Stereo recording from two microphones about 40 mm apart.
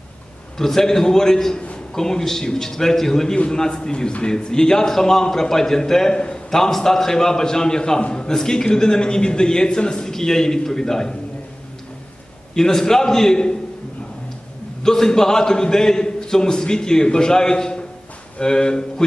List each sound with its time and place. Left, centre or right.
0.6 s a man's voice: centre
12.5 s a man's voice: centre
14.8 s a man's voice: centre